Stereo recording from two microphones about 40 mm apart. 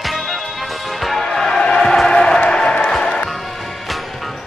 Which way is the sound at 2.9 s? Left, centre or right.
Centre.